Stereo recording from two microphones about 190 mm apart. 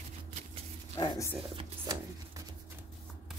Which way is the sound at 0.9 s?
20° left (ahead or behind).